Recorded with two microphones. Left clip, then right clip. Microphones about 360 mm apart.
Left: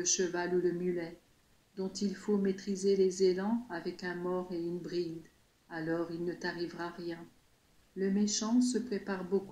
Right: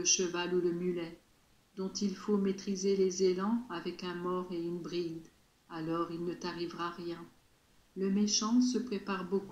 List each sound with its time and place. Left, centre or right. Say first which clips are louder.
0.0 s speech: right 1 dB; centre